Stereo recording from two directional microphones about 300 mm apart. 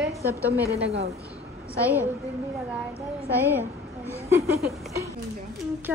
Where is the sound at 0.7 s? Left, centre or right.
Right.